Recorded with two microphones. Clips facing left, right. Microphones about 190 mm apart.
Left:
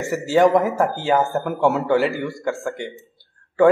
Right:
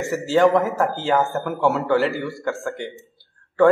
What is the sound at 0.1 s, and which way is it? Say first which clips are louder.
Speech: left 1 dB; 15° left (ahead or behind).